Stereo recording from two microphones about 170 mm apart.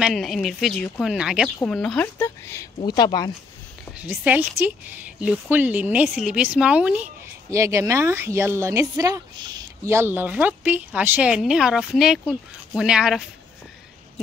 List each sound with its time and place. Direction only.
0.0 s speech: centre (ahead or behind); by 3.3 s 25° left (ahead or behind)
4.0 s speech: 10° right (ahead or behind)
7.5 s speech: 15° right (ahead or behind)